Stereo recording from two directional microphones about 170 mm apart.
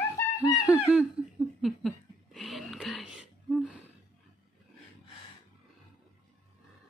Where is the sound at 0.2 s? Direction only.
15° left (ahead or behind).